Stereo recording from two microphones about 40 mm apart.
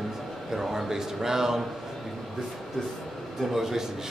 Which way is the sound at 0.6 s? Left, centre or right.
Centre.